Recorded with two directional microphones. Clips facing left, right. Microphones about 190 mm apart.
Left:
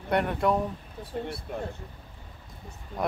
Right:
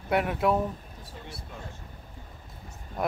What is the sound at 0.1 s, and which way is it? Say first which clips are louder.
Speech: even; 5° right (ahead or behind).